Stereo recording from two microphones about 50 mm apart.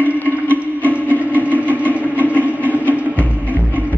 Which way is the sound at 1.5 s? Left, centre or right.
Left.